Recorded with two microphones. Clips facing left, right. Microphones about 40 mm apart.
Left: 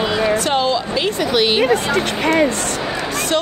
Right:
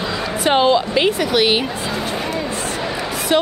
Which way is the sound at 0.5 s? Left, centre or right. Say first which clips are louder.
Right 3 dB; right.